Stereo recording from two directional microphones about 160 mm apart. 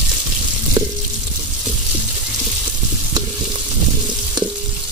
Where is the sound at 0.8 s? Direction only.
20° right (ahead or behind).